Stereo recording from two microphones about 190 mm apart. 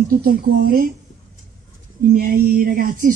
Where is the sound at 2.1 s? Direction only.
50° right (ahead or behind).